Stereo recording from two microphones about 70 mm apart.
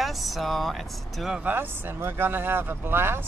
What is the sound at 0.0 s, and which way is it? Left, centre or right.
Speech, centre.